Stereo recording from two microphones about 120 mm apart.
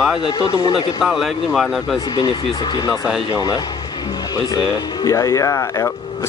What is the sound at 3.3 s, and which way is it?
Speech, 35° left (ahead or behind).